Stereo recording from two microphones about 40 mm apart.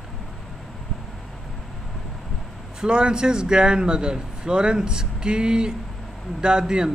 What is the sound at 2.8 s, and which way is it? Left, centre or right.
A man's voice, right.